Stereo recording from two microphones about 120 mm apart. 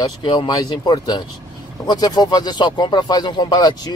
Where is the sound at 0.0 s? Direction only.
40° left (ahead or behind).